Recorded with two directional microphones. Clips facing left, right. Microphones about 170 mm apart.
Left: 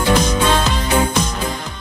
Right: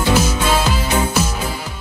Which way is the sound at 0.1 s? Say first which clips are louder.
Left 1 dB; 5° right (ahead or behind).